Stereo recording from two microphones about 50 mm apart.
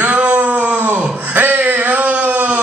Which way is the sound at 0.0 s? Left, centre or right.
Right.